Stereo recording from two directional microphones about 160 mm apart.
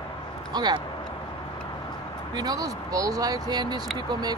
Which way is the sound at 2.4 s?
25° right (ahead or behind).